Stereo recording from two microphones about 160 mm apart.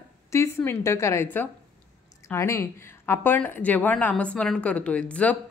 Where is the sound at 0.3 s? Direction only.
15° left (ahead or behind).